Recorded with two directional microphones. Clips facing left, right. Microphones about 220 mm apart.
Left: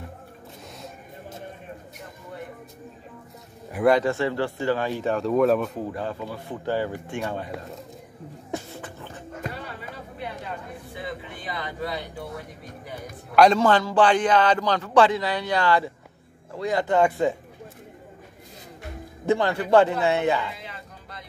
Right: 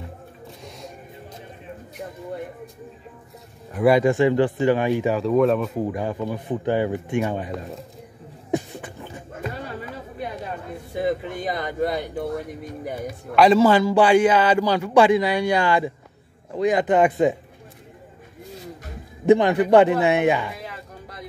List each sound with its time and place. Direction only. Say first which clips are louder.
3.8 s a man's voice: right 4 dB; 10° right (ahead or behind)
5.1 s speech: left 1 dB; centre (ahead or behind)
5.8 s a man's voice: right 5 dB; 15° right (ahead or behind)
8.5 s beatboxing: right 8 dB; 15° right (ahead or behind)
11.0 s a sound: right 12 dB; 45° right (ahead or behind)
13.4 s a man's voice: right 3 dB; 5° right (ahead or behind)
19.2 s a man's voice: right 7 dB; 20° right (ahead or behind)